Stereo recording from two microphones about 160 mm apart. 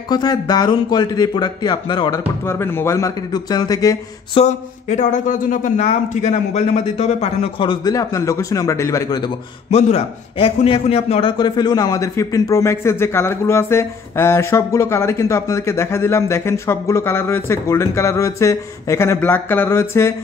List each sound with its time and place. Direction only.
0.1 s speech: 25° left (ahead or behind)
4.4 s speech: 45° left (ahead or behind); by 9.2 s 20° left (ahead or behind)
9.7 s a man's voice: 40° left (ahead or behind); by 20.2 s 15° left (ahead or behind)